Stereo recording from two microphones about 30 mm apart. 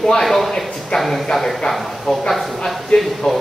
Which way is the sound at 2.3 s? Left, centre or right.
Centre.